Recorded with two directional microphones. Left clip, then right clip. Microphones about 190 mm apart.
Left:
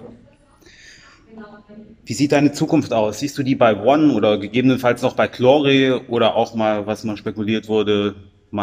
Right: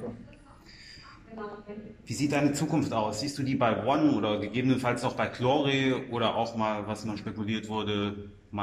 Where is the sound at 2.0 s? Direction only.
50° left (ahead or behind).